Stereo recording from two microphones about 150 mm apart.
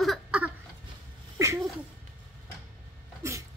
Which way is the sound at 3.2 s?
20° right (ahead or behind).